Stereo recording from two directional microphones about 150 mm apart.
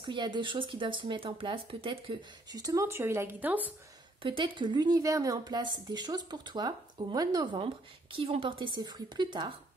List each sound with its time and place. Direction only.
0.0 s speech: 30° right (ahead or behind); by 3.7 s 10° right (ahead or behind)
4.2 s speech: 35° right (ahead or behind)